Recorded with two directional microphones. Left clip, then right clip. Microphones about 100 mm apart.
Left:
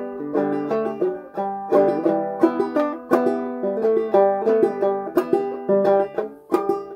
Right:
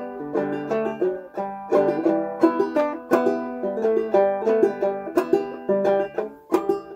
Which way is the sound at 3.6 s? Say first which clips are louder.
Left 2 dB; 50° left (ahead or behind).